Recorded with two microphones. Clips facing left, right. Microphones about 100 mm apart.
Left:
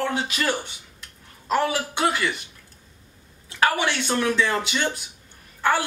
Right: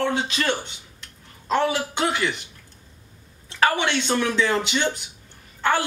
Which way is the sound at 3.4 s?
10° left (ahead or behind).